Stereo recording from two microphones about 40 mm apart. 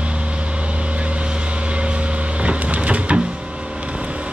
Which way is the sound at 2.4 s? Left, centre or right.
Right.